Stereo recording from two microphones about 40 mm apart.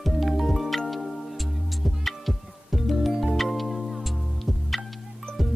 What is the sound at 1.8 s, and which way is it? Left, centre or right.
Music, centre.